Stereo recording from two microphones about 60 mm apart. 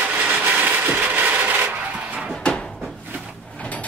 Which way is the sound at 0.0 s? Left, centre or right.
Right.